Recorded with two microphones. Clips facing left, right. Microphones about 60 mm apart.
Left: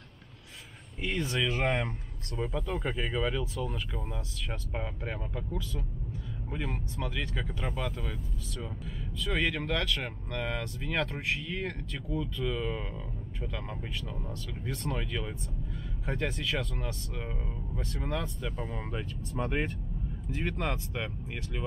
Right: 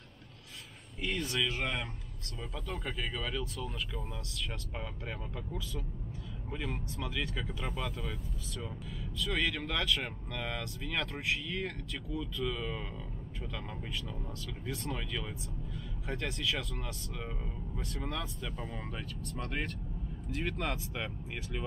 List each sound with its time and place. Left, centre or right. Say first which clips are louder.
1.0 s speech: left 3 dB; centre
1.6 s speech: left 6 dB; left
2.3 s speech: left 10 dB; left
2.6 s speech: left 5 dB; centre
6.5 s speech: left 2 dB; centre
14.7 s speech: left 3 dB; centre
15.0 s speech: left 4 dB; centre
20.3 s speech: left 2 dB; centre